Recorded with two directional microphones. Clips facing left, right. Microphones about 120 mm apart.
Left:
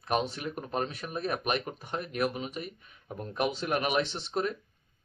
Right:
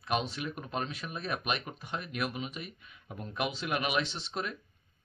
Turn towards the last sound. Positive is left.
turn(degrees=45)  # may be behind; listen again after turning